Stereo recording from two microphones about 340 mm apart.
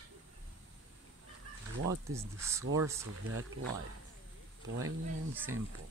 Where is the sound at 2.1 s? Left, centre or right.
Centre.